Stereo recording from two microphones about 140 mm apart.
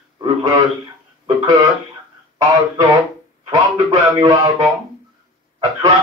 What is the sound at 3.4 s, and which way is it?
Speech, 25° right (ahead or behind).